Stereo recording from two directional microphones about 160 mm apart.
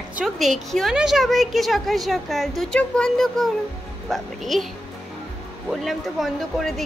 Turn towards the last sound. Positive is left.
turn(degrees=0)  # may be behind; listen again after turning